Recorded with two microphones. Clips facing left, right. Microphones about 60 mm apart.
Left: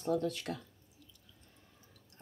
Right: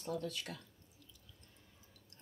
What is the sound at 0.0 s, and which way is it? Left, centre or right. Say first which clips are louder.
Speech: left 7 dB; left.